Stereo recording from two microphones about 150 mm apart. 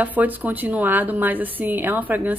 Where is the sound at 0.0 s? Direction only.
10° right (ahead or behind).